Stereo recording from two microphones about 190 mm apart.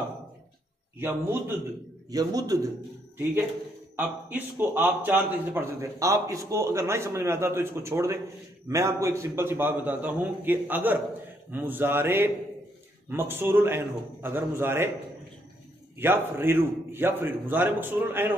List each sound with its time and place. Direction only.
0.9 s a man's voice: 10° right (ahead or behind)
3.9 s a man's voice: 10° right (ahead or behind)
16.0 s a man's voice: 10° right (ahead or behind)